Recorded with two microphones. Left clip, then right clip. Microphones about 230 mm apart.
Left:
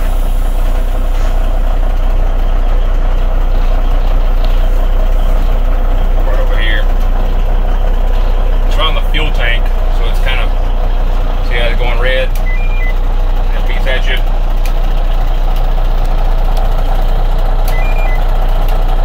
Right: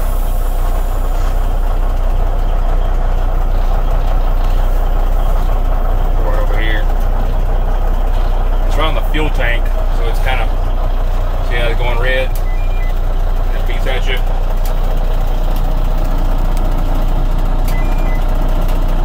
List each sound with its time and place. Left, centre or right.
8.8 s vehicle: centre
11.5 s vehicle: centre